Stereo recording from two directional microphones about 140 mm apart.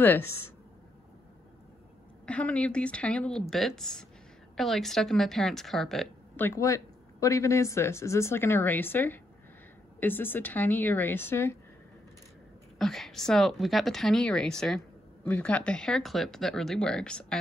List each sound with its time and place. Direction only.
0.0 s speech: 15° left (ahead or behind)
2.2 s speech: 10° left (ahead or behind)
6.3 s speech: 15° left (ahead or behind)
12.7 s speech: centre (ahead or behind)